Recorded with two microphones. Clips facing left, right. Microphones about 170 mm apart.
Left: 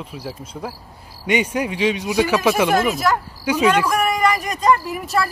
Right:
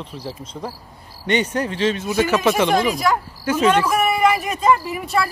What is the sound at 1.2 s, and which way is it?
Speech, 10° left (ahead or behind).